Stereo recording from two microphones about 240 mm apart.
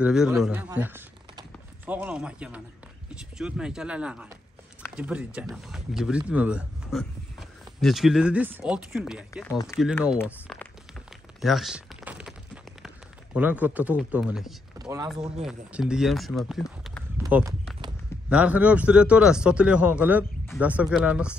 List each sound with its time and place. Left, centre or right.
0.0 s speech: centre
9.5 s speech: centre
10.2 s speech: centre
11.4 s a sound: centre
12.8 s a man's voice: centre
14.8 s speech: centre
15.4 s speech: centre
17.2 s a sound: centre
18.3 s speech: centre